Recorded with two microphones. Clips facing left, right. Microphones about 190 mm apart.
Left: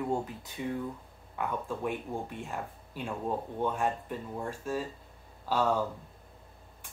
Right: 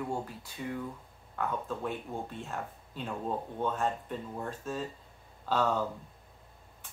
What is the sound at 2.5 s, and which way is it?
Speech, 10° left (ahead or behind).